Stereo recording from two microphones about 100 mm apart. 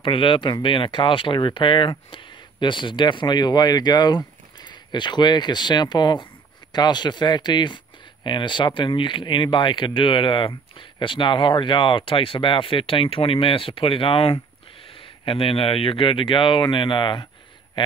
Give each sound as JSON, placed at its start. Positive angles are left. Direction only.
{"t": 0.0, "sound": "speech", "side_deg": 55}